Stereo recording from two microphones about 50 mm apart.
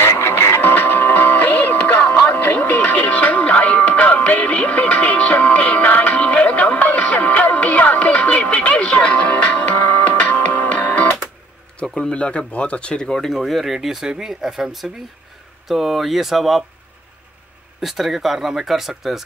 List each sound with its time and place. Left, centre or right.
0.0 s music: left
0.6 s music: left
11.8 s speech: centre
13.3 s speech: centre
17.7 s speech: centre